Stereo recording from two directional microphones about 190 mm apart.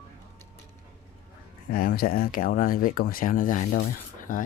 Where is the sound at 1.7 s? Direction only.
50° left (ahead or behind).